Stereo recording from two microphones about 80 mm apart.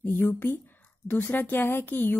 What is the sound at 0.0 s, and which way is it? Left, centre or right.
Speech, left.